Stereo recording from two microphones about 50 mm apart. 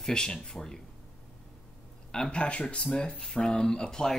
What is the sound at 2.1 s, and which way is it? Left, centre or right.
Speech, centre.